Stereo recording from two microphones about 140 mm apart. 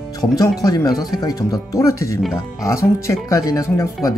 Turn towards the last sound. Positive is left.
turn(degrees=25)  # may be behind; listen again after turning